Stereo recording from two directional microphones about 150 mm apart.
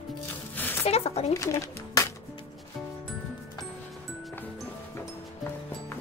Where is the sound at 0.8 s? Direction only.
45° left (ahead or behind).